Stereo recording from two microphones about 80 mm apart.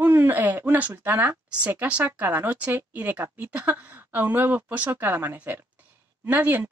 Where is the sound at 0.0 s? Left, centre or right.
Right.